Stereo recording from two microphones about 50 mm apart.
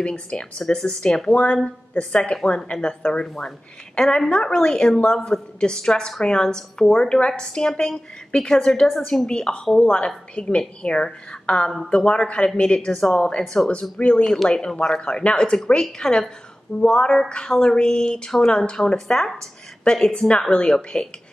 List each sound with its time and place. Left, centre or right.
0.0 s a woman's voice: left
13.9 s a woman's voice: left
14.2 s a woman's voice: centre
19.9 s a woman's voice: centre